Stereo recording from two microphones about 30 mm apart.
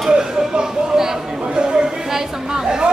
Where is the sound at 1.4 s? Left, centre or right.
Right.